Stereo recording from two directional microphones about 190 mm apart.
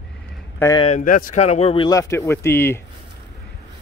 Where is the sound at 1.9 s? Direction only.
15° left (ahead or behind).